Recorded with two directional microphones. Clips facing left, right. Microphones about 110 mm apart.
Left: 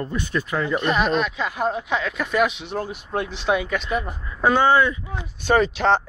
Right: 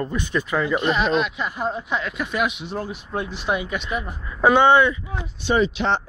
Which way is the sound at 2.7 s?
60° left (ahead or behind).